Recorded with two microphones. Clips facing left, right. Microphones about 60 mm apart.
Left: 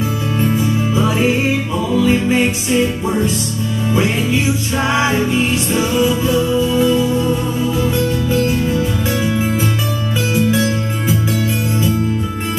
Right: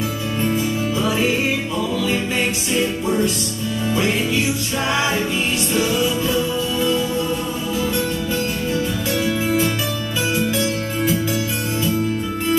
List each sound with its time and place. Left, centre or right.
0.4 s music: centre
2.0 s music: centre
5.7 s music: centre